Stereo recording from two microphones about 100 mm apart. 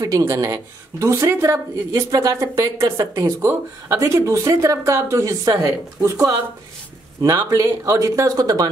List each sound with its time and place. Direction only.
0.2 s speech: 35° right (ahead or behind)